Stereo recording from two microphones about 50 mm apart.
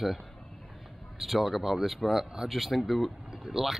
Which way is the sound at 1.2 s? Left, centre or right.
Centre.